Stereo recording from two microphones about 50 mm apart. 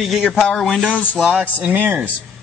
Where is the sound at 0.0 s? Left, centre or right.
Centre.